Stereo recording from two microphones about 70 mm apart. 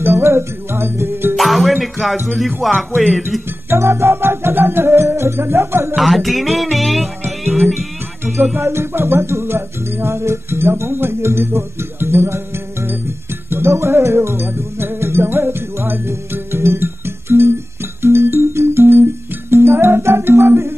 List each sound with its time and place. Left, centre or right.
0.0 s music: right
1.3 s music: centre
2.3 s speech: centre
3.7 s music: right
5.9 s music: centre
8.5 s music: right